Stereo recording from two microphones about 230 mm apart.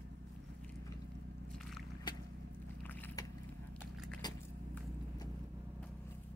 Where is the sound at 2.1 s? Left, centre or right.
Centre.